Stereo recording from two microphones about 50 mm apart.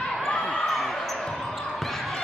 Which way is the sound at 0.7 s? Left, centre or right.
Centre.